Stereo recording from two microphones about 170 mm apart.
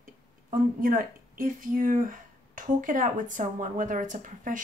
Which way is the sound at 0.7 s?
55° right (ahead or behind).